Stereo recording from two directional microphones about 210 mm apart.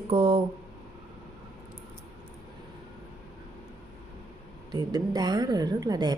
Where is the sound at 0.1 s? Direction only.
25° right (ahead or behind).